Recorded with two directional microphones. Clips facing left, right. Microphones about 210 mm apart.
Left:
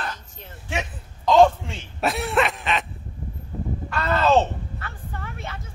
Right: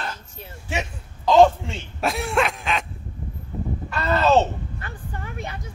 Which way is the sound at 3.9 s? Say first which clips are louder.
Right 1 dB; centre (ahead or behind).